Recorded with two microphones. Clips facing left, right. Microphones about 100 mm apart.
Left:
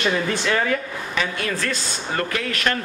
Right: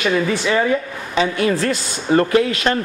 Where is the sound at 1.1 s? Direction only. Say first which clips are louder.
Right 8 dB; 25° right (ahead or behind).